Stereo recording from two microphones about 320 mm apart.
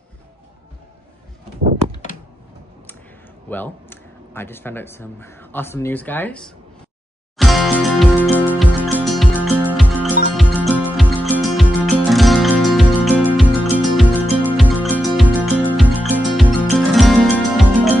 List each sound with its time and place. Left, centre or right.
1.9 s a sound: left
3.4 s speech: centre
7.3 s music: centre